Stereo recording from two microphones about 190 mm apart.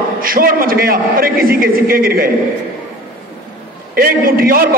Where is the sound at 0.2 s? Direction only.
50° right (ahead or behind).